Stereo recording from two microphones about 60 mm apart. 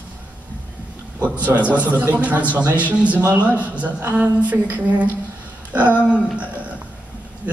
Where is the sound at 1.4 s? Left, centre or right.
Right.